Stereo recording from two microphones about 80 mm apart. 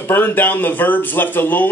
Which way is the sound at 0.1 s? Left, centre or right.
Left.